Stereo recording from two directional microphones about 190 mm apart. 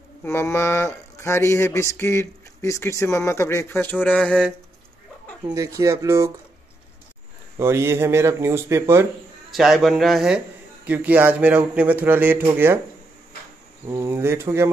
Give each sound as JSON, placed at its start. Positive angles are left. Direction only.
{"t": 0.2, "sound": "speech", "side_deg": 10}
{"t": 5.5, "sound": "speech", "side_deg": -15}
{"t": 7.5, "sound": "speech", "side_deg": -15}
{"t": 9.5, "sound": "a man's voice", "side_deg": 0}
{"t": 13.8, "sound": "speech", "side_deg": -15}